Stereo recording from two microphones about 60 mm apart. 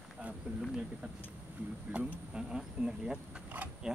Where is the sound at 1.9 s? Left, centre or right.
Centre.